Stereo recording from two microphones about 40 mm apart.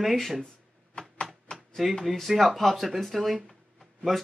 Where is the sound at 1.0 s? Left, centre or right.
Left.